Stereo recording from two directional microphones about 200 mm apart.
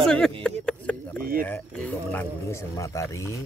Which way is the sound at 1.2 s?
45° right (ahead or behind).